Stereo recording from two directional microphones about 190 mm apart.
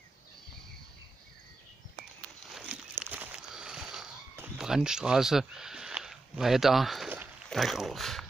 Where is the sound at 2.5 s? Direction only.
Centre (ahead or behind).